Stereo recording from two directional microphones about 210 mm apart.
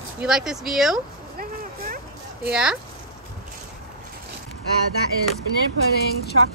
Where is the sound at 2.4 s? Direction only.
5° right (ahead or behind).